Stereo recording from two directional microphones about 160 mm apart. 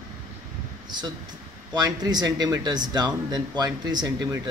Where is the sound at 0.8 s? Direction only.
25° right (ahead or behind).